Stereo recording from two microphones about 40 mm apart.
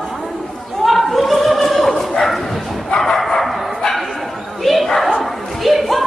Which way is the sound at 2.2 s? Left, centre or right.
Centre.